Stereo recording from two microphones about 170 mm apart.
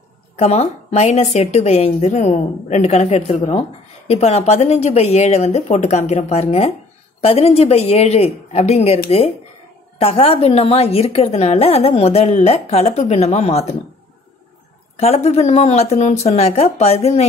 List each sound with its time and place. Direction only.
0.4 s a woman's voice: 40° left (ahead or behind)
15.0 s a woman's voice: 35° left (ahead or behind)